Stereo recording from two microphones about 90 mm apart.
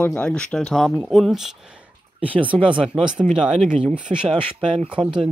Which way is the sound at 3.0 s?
10° right (ahead or behind).